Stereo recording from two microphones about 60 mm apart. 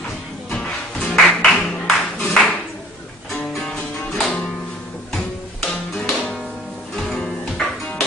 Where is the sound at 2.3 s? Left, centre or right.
Centre.